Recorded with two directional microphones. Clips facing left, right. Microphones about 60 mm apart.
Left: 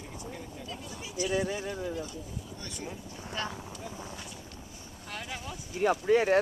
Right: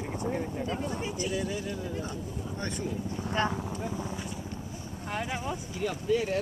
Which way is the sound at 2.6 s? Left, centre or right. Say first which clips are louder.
Right 10 dB; right.